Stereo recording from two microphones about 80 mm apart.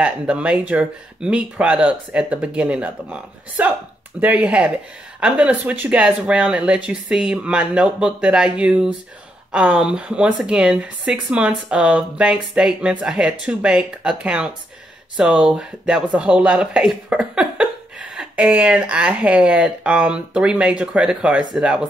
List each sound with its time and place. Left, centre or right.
0.0 s speech: centre